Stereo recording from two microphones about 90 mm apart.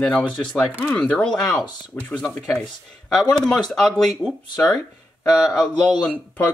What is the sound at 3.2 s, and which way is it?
Speech, 5° left (ahead or behind).